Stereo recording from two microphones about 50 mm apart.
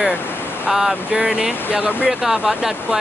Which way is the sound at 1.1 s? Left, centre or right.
Right.